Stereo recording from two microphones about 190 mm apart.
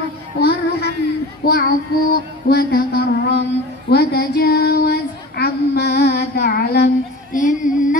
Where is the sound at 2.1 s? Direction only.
60° left (ahead or behind).